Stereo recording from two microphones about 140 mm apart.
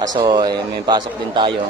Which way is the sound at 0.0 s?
30° right (ahead or behind).